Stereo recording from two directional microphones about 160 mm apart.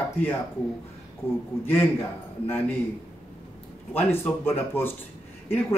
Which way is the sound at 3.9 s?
15° left (ahead or behind).